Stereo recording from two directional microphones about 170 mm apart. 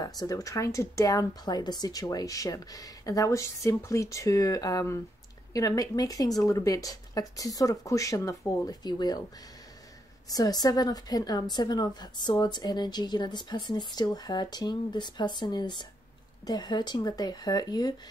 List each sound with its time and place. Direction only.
0.0 s speech: 20° left (ahead or behind)
10.3 s speech: 25° left (ahead or behind)